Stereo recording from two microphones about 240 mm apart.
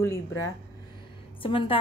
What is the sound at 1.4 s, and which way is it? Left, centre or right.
Speech, left.